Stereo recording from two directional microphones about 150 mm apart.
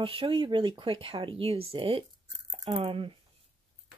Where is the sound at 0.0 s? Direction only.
35° right (ahead or behind).